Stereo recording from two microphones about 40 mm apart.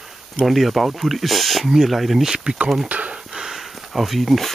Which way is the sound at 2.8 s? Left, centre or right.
Right.